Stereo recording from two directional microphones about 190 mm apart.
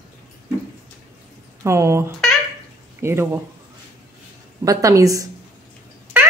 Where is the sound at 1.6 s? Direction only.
15° right (ahead or behind).